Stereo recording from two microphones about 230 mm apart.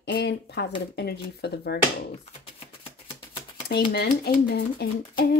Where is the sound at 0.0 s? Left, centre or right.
Left.